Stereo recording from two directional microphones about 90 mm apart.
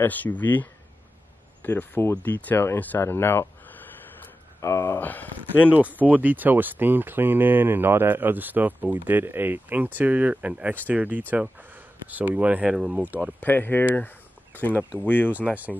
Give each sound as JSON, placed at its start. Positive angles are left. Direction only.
{"t": 0.0, "sound": "speech", "side_deg": 20}
{"t": 5.0, "sound": "speech", "side_deg": 20}
{"t": 5.7, "sound": "speech", "side_deg": -20}
{"t": 13.4, "sound": "speech", "side_deg": 20}